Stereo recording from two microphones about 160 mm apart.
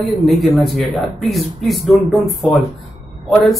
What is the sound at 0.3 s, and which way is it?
Speech, centre (ahead or behind).